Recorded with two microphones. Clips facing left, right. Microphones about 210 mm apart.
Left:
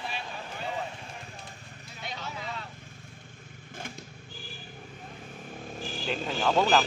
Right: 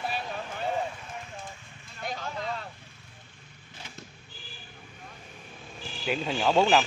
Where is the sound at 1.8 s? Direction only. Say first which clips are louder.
Right 4 dB; 50° right (ahead or behind).